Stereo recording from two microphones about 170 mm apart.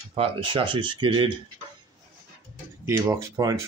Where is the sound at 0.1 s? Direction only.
35° right (ahead or behind).